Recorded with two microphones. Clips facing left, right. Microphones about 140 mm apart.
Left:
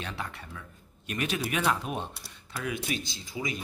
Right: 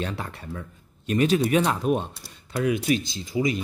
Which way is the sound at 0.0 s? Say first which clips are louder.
Right 6 dB; 40° right (ahead or behind).